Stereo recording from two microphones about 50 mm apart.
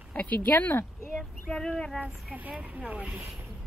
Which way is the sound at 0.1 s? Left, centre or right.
Left.